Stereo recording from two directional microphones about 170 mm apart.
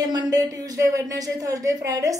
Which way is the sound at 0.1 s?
25° right (ahead or behind).